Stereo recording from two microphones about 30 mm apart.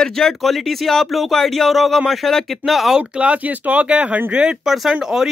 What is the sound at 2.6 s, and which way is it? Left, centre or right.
Speech, right.